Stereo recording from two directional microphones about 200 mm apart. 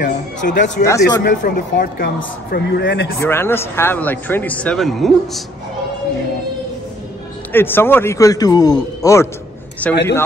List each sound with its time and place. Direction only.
0.0 s speech: 40° left (ahead or behind)
0.8 s speech: 15° left (ahead or behind)
1.3 s speech: 45° left (ahead or behind)
3.2 s speech: 10° left (ahead or behind)
7.5 s speech: 10° left (ahead or behind)